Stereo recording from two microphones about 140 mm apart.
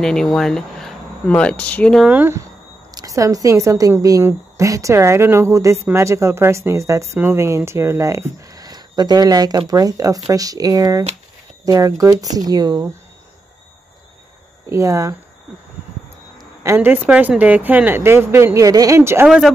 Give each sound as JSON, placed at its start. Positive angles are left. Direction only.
{"t": 0.0, "sound": "speech", "side_deg": 5}
{"t": 2.0, "sound": "speech", "side_deg": -15}
{"t": 2.9, "sound": "speech", "side_deg": -25}
{"t": 14.7, "sound": "speech", "side_deg": -25}
{"t": 16.3, "sound": "speech", "side_deg": -20}
{"t": 19.2, "sound": "speech", "side_deg": 0}